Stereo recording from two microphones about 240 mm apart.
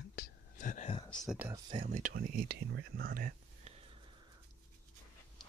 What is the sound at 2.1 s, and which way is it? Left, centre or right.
Speech, right.